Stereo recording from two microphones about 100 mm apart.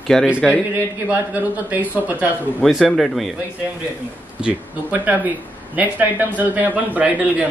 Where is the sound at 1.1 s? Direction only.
15° right (ahead or behind).